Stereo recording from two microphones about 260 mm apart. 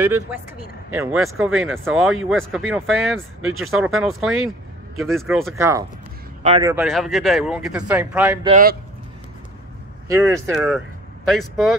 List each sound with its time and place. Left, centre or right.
0.0 s speech: centre
5.6 s speech: centre
6.4 s speech: right
6.7 s speech: centre
8.5 s speech: right
10.0 s speech: centre